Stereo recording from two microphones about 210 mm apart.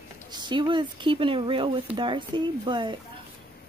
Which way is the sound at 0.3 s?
20° right (ahead or behind).